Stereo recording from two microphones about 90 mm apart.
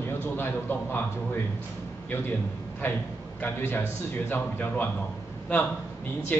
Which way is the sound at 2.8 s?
20° left (ahead or behind).